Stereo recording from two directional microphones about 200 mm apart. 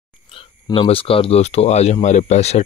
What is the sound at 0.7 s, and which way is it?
Speech, 30° left (ahead or behind).